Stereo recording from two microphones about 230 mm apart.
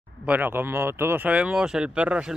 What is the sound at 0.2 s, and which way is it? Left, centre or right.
Speech, centre.